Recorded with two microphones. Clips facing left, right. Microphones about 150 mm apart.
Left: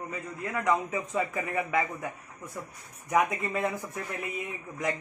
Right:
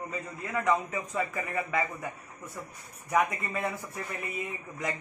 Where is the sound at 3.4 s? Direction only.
15° left (ahead or behind).